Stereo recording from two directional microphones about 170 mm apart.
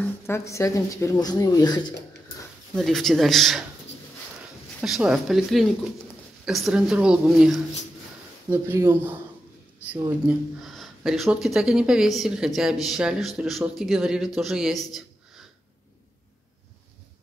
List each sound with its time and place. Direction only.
0.3 s speech: 15° left (ahead or behind)
2.7 s speech: centre (ahead or behind)
4.8 s speech: 5° right (ahead or behind)
8.5 s speech: 15° right (ahead or behind)